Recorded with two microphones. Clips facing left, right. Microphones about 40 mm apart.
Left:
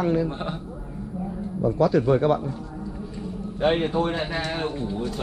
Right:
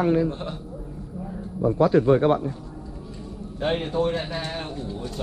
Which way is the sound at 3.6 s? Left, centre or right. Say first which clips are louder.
Left 2 dB; centre.